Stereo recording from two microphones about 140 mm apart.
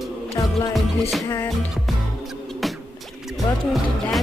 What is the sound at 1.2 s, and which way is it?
Music, 25° left (ahead or behind).